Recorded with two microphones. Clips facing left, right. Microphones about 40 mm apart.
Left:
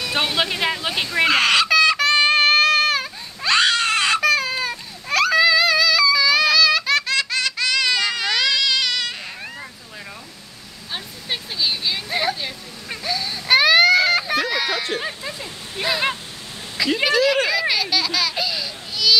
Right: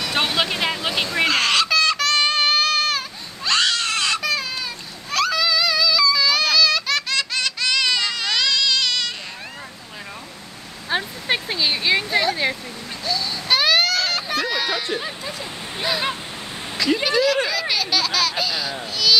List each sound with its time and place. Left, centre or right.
0.1 s speech: centre
1.1 s music: centre
3.5 s crying: left
5.1 s music: left
6.1 s baby laughter: centre
10.9 s a sound: right
11.5 s a sound: right
13.0 s baby cry: left; by 14.8 s centre
15.0 s a sound: centre
15.8 s honk: centre
16.7 s a sound: centre
18.3 s baby cry: centre